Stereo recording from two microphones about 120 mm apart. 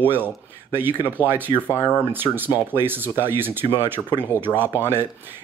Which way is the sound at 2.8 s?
15° right (ahead or behind).